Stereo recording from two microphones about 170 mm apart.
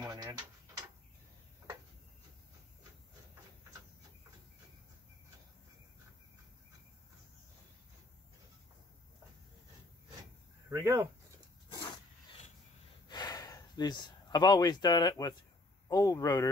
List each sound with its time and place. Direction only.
0.0 s mechanisms: 20° right (ahead or behind)
10.7 s speech: 20° right (ahead or behind)
13.1 s a sound: 20° left (ahead or behind)
15.9 s speech: 20° left (ahead or behind)